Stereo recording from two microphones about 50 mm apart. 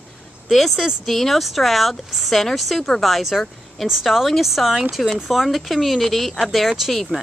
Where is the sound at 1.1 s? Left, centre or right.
Centre.